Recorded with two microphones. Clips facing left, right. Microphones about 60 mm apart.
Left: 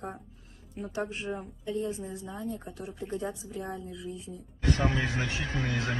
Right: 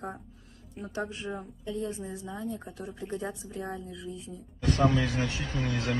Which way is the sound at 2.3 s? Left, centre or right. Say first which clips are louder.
Right 1 dB; right.